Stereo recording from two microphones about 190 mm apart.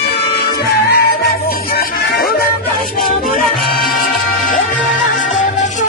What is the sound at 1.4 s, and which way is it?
Music, 50° left (ahead or behind).